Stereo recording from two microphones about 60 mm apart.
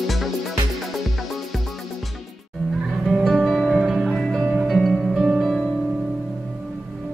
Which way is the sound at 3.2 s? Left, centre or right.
Centre.